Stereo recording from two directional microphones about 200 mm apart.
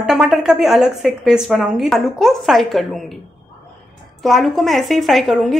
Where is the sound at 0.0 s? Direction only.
Centre (ahead or behind).